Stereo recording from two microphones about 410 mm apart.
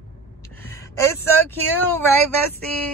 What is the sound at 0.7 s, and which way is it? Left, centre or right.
Speech, centre.